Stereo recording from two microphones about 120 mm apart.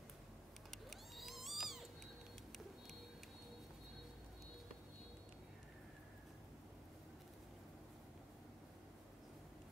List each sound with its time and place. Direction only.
0.7 s cat: centre (ahead or behind)